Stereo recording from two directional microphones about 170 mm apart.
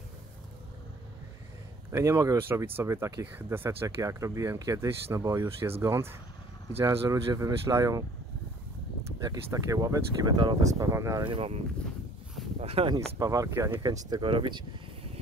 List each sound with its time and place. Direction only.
1.9 s speech: 15° right (ahead or behind)
9.2 s speech: 20° right (ahead or behind)
11.2 s speech: 35° right (ahead or behind)
13.2 s speech: 20° right (ahead or behind)
14.1 s speech: 30° right (ahead or behind)